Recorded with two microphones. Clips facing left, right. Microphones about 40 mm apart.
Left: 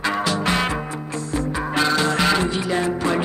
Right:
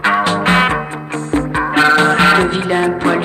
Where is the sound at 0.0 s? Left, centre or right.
Right.